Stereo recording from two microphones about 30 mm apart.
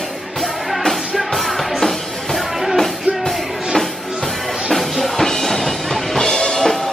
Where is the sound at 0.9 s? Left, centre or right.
Centre.